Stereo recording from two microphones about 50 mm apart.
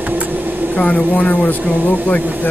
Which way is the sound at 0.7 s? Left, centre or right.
Left.